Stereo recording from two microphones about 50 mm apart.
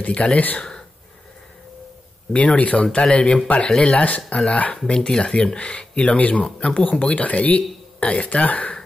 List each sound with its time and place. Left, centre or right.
0.0 s speech: left
0.6 s a sound: centre
2.3 s speech: left
6.4 s speech: centre